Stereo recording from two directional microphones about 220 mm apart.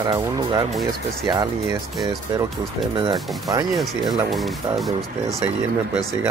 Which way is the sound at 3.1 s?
Centre (ahead or behind).